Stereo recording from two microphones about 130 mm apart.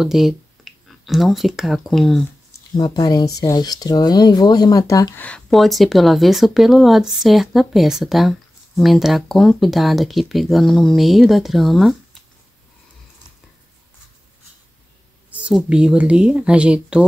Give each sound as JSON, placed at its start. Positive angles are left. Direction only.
{"t": 0.0, "sound": "speech", "side_deg": -5}
{"t": 2.8, "sound": "speech", "side_deg": 30}
{"t": 5.1, "sound": "speech", "side_deg": 10}
{"t": 5.5, "sound": "speech", "side_deg": 0}
{"t": 15.3, "sound": "speech", "side_deg": -10}